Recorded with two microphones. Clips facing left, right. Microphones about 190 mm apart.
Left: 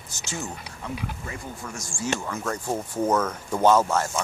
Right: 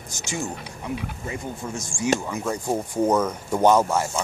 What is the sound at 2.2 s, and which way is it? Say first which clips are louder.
Speech: right 2 dB; 10° right (ahead or behind).